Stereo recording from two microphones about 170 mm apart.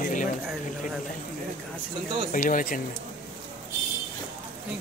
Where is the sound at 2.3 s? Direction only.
50° left (ahead or behind).